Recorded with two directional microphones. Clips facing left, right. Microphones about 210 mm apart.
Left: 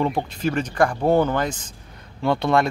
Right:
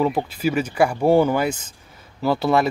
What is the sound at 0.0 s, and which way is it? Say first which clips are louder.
Speech: right 2 dB; 5° right (ahead or behind).